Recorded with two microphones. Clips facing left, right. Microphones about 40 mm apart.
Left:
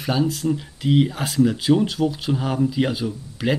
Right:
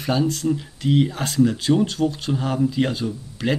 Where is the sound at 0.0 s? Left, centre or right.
Centre.